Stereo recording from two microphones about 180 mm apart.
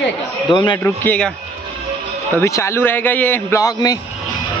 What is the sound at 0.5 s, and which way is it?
Speech, 25° left (ahead or behind).